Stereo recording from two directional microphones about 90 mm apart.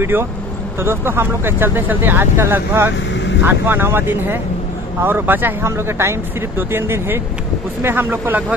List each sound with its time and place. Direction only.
0.0 s speech: 25° right (ahead or behind)